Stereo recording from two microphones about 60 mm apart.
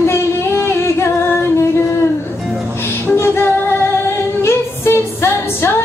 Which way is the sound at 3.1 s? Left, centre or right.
Left.